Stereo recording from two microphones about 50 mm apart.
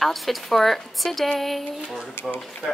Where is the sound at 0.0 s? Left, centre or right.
Centre.